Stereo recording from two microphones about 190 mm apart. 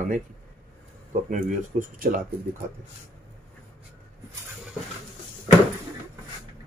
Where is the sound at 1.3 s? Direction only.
45° right (ahead or behind).